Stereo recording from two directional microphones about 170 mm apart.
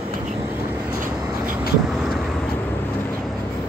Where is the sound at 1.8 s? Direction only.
Centre (ahead or behind).